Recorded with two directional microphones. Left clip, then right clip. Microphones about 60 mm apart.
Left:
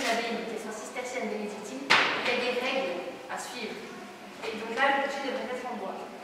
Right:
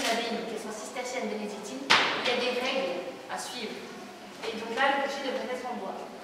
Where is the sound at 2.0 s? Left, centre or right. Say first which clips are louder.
Left 1 dB; centre.